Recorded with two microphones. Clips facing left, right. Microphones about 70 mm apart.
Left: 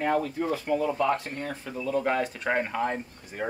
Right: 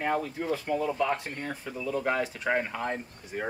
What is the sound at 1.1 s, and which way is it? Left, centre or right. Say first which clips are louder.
Speech: left 3 dB; centre.